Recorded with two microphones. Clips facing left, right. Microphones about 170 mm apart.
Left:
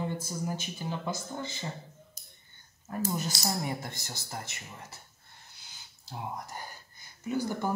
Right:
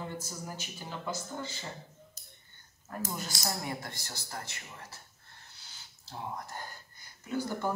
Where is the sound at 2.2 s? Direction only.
15° left (ahead or behind).